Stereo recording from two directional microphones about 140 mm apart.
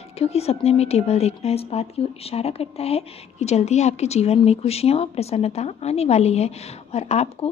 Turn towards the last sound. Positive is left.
turn(degrees=50)  # may be behind; listen again after turning